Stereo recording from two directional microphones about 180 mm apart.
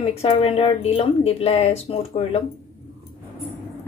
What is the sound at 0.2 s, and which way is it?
Speech, 35° left (ahead or behind).